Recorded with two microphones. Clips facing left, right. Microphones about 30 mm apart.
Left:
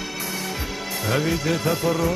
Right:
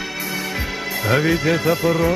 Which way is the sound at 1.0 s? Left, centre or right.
Centre.